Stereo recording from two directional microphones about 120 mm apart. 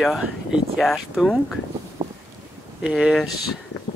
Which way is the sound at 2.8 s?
Centre (ahead or behind).